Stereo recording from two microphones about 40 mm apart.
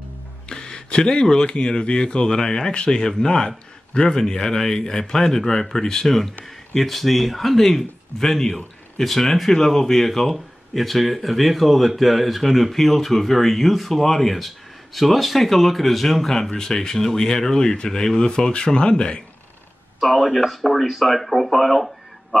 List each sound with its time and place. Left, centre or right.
0.5 s speech: centre
8.5 s a man's voice: left
9.0 s speech: centre; by 19.2 s left
20.0 s speech: centre